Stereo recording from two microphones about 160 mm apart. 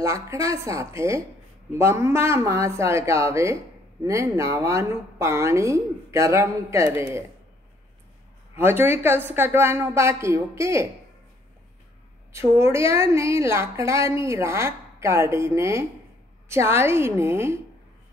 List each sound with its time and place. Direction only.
0.0 s a woman's voice: 20° right (ahead or behind)
8.5 s a woman's voice: 15° right (ahead or behind)
12.3 s a woman's voice: 15° right (ahead or behind)